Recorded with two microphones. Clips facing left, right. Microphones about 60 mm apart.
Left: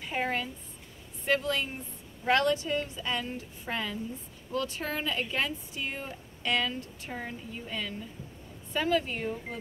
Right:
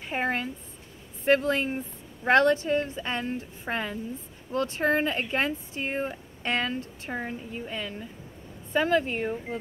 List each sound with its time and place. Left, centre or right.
0.0 s a woman's voice: right